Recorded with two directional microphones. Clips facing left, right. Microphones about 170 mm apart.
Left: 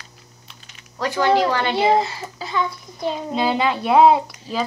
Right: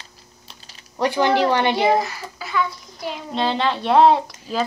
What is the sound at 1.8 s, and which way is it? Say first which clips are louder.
Speech: left 1 dB; 25° left (ahead or behind).